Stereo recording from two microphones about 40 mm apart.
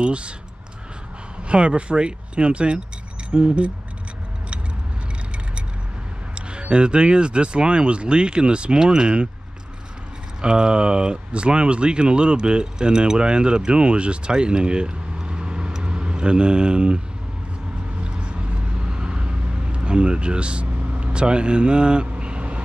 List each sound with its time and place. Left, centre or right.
0.0 s speech: right
1.5 s speech: right
6.3 s speech: right
10.4 s speech: right
15.2 s vehicle: right
15.8 s speech: right
18.0 s vehicle: right